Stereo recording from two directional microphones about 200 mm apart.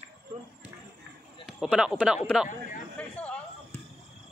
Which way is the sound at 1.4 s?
Centre (ahead or behind).